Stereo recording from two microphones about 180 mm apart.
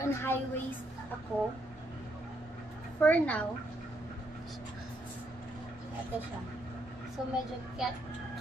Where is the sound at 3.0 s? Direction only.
10° left (ahead or behind).